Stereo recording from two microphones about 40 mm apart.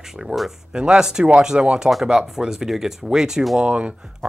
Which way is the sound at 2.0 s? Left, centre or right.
Centre.